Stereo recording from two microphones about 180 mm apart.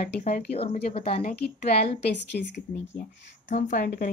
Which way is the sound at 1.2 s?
60° left (ahead or behind).